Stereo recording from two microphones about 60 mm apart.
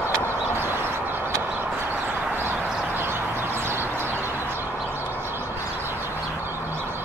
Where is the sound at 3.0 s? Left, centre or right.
Right.